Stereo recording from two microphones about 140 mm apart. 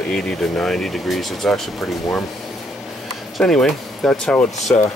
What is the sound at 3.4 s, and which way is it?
Speech, 5° left (ahead or behind).